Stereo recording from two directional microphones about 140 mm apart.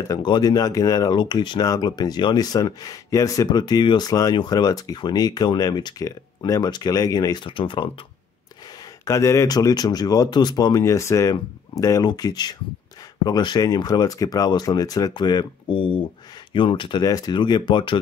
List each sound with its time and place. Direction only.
0.1 s speech: 30° left (ahead or behind)
9.0 s speech: 20° left (ahead or behind)